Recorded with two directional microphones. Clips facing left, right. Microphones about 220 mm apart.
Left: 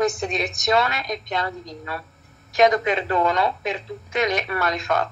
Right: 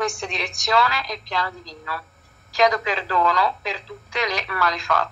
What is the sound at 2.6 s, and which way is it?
Speech, 25° left (ahead or behind).